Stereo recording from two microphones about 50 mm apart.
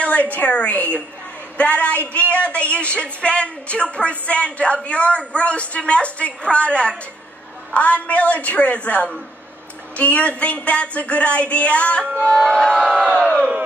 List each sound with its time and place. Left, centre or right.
0.0 s speech: left
12.4 s crowd: centre